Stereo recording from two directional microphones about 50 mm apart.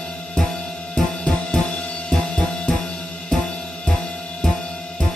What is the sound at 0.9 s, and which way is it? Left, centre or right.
Music, centre.